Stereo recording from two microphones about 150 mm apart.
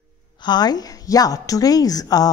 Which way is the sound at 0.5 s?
25° left (ahead or behind).